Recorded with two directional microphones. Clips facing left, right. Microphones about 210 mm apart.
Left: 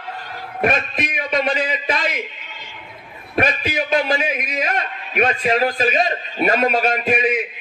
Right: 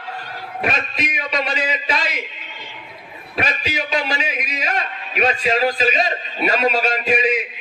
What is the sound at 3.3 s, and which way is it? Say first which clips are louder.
A man's voice: left 4 dB; 50° left (ahead or behind).